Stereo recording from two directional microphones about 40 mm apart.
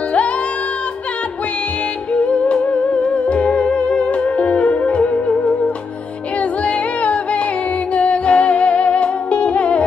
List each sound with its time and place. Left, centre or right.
2.1 s music: left
6.6 s music: left